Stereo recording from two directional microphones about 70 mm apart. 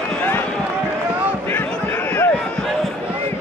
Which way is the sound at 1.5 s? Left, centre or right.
Left.